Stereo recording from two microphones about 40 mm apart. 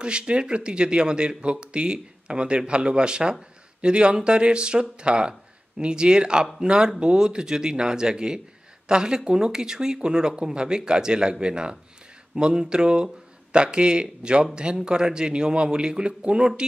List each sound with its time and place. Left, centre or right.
0.0 s speech: right